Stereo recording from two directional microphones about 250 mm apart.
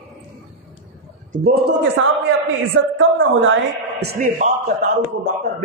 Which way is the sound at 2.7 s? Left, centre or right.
Right.